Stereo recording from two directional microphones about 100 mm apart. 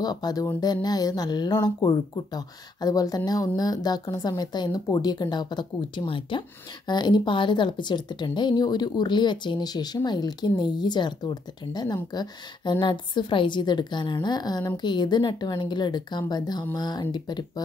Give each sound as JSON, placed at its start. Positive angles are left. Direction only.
{"t": 0.0, "sound": "speech", "side_deg": 45}
{"t": 6.9, "sound": "speech", "side_deg": 50}